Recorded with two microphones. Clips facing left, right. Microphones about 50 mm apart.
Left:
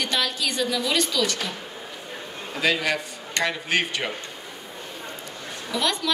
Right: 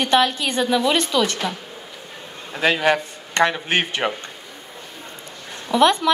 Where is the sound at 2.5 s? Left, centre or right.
Right.